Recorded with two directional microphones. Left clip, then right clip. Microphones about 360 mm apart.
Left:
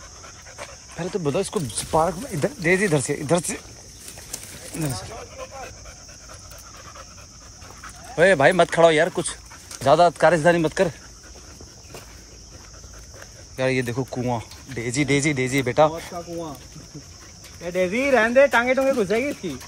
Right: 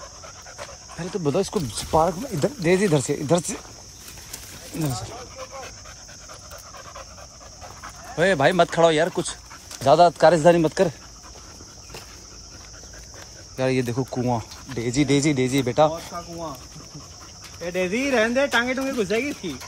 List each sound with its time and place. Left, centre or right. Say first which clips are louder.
0.6 s speech: left 3 dB; centre
7.8 s speech: left 4 dB; centre
13.6 s speech: even; centre
17.6 s speech: left 3 dB; centre